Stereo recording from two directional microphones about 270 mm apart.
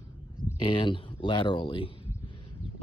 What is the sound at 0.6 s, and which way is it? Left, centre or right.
Speech, centre.